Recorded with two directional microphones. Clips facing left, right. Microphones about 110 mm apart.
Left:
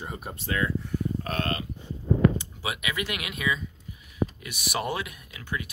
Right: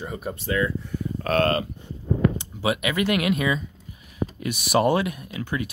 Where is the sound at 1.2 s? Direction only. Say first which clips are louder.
Right 10 dB; 85° right.